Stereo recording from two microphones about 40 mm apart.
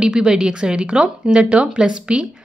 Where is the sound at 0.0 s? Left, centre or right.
Centre.